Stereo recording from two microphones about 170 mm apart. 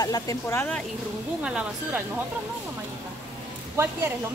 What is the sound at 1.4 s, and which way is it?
Speech, 5° right (ahead or behind).